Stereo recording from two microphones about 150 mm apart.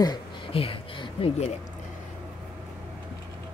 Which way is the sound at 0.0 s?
35° left (ahead or behind).